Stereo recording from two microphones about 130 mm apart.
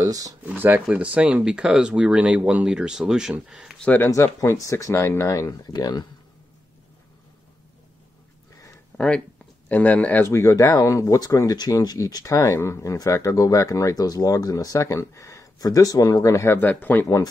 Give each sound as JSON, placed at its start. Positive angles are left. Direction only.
{"t": 0.0, "sound": "speech", "side_deg": -25}
{"t": 0.5, "sound": "speech", "side_deg": -10}
{"t": 3.8, "sound": "speech", "side_deg": 10}
{"t": 4.4, "sound": "speech", "side_deg": 25}
{"t": 8.9, "sound": "speech", "side_deg": 10}